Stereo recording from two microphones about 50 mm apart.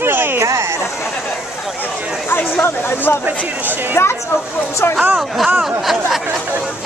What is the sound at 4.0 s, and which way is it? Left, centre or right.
Speech, left.